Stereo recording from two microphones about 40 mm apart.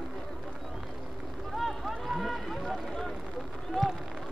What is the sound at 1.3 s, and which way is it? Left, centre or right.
Run, centre.